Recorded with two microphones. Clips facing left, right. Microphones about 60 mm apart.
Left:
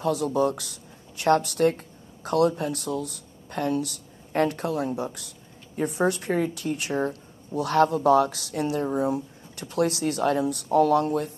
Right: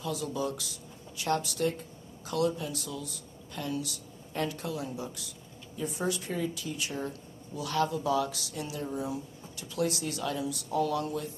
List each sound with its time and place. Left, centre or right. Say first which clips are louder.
0.0 s a woman's voice: left 9 dB; left